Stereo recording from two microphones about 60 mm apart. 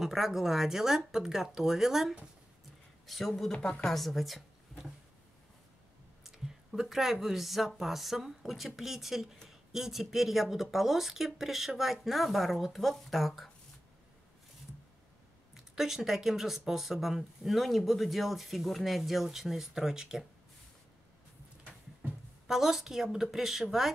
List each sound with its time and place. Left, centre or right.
0.0 s speech: centre
3.5 s a woman's voice: centre
3.9 s a woman's voice: centre
6.3 s speech: centre
15.5 s speech: centre
22.5 s speech: centre